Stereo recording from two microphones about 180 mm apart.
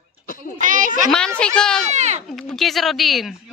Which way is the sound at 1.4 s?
5° left (ahead or behind).